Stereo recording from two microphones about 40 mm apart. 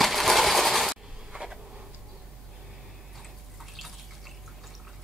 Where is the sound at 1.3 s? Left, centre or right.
Centre.